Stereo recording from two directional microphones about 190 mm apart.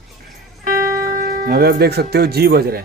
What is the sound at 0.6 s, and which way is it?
Speech, 45° right (ahead or behind).